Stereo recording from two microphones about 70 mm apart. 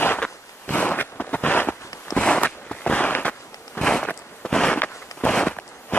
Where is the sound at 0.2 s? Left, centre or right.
Centre.